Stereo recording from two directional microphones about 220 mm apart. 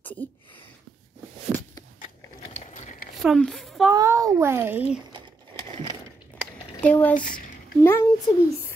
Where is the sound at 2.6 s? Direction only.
35° left (ahead or behind).